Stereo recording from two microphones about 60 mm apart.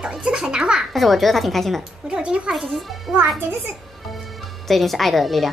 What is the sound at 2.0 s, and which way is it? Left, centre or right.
Speech, centre.